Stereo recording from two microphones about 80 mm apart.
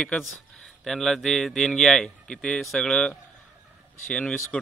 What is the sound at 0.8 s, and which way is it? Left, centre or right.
A man's voice, centre.